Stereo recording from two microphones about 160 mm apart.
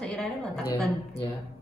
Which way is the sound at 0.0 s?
Centre (ahead or behind).